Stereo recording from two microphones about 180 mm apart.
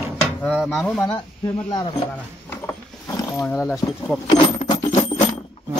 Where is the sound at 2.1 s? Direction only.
10° left (ahead or behind).